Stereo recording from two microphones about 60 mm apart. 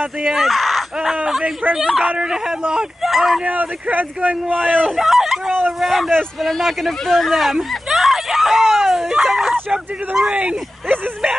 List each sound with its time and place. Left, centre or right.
0.3 s speech: centre
1.4 s speech: right
1.8 s speech: centre
3.4 s speech: right
4.8 s speech: centre
10.3 s speech: right